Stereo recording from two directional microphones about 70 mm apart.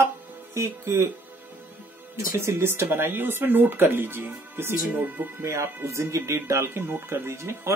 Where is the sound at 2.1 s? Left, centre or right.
Right.